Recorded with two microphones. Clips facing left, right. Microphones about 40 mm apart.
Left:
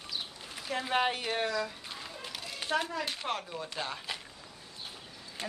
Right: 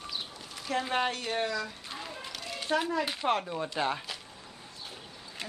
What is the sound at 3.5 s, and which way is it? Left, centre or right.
Chopping, right.